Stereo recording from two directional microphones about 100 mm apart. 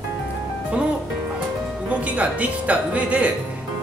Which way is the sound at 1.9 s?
15° right (ahead or behind).